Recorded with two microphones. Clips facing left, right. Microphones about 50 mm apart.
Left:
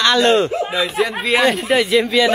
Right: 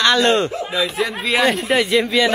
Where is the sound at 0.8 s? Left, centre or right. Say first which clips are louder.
Left 2 dB; centre.